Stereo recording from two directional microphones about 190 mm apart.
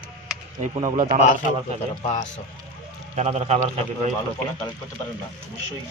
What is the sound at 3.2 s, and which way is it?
Speech, 35° right (ahead or behind).